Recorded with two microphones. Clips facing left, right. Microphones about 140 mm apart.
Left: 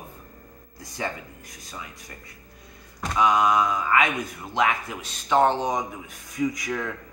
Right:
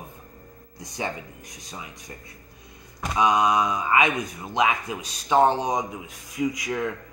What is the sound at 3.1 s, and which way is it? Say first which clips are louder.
Speech: even; 15° right (ahead or behind).